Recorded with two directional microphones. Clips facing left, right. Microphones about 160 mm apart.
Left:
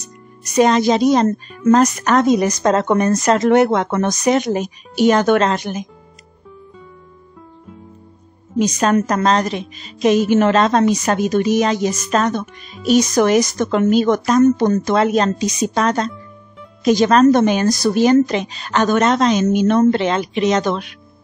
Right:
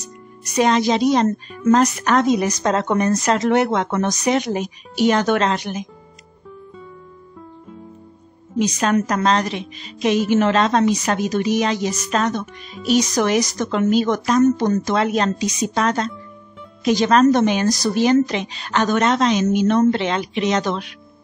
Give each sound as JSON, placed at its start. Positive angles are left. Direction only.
{"t": 0.6, "sound": "a woman's voice", "side_deg": 45}
{"t": 8.5, "sound": "a woman's voice", "side_deg": 45}